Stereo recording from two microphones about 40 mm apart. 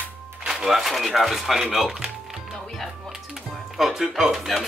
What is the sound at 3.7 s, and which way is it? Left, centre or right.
Speech, centre.